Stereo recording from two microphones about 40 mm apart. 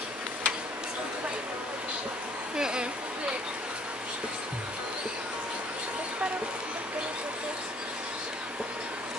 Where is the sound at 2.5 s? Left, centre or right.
Right.